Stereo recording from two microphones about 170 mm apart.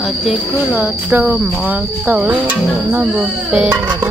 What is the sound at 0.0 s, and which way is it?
Speech, 5° right (ahead or behind).